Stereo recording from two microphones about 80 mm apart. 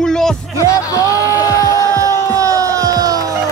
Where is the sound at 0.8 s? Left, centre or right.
Left.